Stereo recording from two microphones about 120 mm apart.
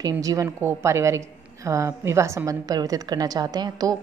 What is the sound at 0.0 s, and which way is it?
A woman's voice, 30° right (ahead or behind).